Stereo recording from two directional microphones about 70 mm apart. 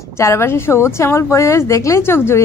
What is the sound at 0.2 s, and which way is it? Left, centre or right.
A woman's voice, left.